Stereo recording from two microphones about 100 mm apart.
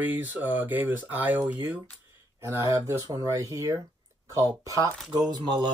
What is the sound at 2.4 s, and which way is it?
Speech, 25° right (ahead or behind).